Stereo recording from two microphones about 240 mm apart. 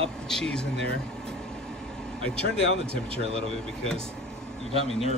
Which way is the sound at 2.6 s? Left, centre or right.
Right.